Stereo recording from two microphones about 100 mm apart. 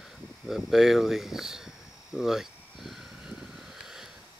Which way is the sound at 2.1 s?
5° right (ahead or behind).